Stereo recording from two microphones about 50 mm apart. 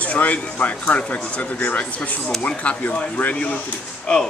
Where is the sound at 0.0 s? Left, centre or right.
Left.